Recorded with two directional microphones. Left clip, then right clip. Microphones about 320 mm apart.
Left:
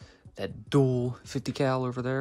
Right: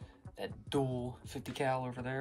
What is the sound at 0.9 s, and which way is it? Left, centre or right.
Speech, left.